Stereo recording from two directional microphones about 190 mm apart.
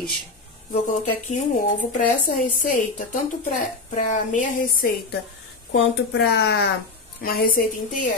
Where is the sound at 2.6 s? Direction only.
45° left (ahead or behind).